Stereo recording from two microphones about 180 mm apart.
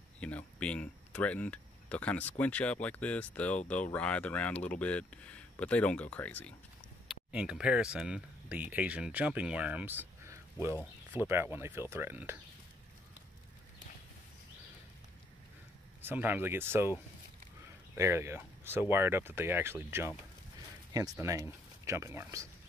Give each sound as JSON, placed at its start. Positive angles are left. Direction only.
{"t": 0.2, "sound": "speech", "side_deg": 5}
{"t": 7.1, "sound": "speech", "side_deg": -5}
{"t": 16.0, "sound": "speech", "side_deg": -10}
{"t": 17.9, "sound": "speech", "side_deg": -15}
{"t": 21.2, "sound": "speech", "side_deg": -15}